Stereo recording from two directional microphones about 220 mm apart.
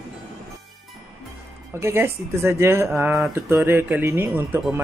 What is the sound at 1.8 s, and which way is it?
Speech, 10° right (ahead or behind).